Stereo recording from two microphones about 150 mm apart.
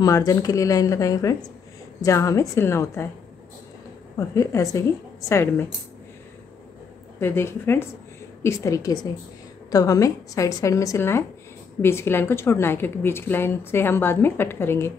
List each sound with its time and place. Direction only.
0.0 s speech: 25° left (ahead or behind)
4.2 s speech: 20° left (ahead or behind)
7.2 s a woman's voice: 15° left (ahead or behind)